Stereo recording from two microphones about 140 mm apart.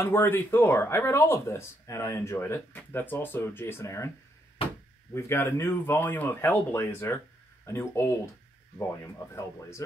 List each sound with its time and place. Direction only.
0.0 s speech: 15° left (ahead or behind)
5.1 s speech: 15° left (ahead or behind)